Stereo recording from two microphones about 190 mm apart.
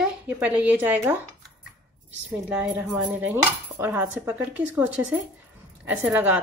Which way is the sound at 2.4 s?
10° right (ahead or behind).